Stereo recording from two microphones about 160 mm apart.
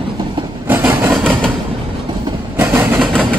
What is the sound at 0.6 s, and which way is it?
Train, 15° right (ahead or behind).